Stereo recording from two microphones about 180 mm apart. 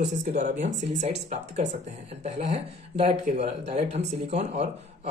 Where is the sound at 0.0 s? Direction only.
40° right (ahead or behind).